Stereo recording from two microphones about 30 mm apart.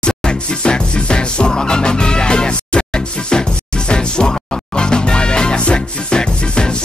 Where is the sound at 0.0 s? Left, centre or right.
Left.